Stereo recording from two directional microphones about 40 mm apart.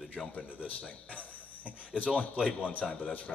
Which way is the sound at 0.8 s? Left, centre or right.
Left.